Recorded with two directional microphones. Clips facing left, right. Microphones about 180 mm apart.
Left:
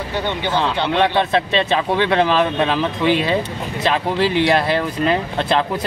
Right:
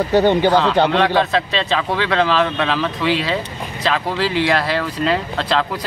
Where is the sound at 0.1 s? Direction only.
45° right (ahead or behind).